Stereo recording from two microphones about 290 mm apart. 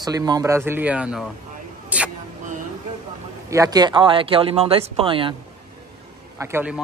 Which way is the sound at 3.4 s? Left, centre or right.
Centre.